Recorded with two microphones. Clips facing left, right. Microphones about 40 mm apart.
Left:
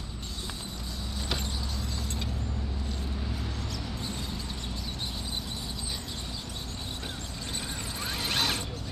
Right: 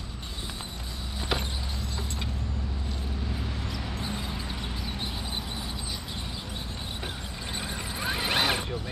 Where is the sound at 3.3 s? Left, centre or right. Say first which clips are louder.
Right 2 dB; centre.